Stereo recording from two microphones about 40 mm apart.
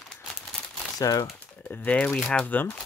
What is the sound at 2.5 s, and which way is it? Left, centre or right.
Speech, left.